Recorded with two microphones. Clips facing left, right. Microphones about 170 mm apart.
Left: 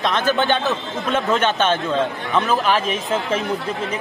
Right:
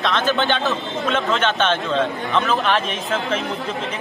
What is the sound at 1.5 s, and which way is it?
Speech, 10° left (ahead or behind).